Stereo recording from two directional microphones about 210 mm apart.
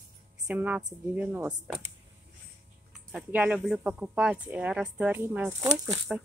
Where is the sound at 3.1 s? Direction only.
5° right (ahead or behind).